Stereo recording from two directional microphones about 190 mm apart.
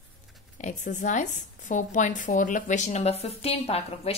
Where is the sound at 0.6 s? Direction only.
40° left (ahead or behind).